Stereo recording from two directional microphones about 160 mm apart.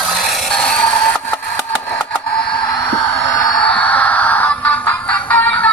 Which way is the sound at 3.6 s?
10° left (ahead or behind).